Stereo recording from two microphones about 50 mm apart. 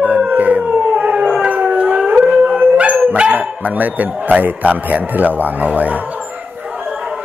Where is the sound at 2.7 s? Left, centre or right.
Right.